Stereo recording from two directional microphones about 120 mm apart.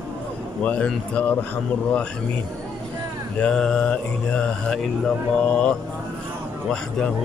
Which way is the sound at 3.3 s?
5° left (ahead or behind).